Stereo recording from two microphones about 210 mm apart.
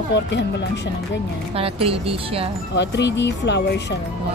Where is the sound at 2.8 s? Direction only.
55° left (ahead or behind).